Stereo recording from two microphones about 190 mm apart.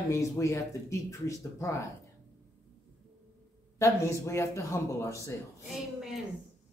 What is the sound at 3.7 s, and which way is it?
A man's voice, 15° left (ahead or behind).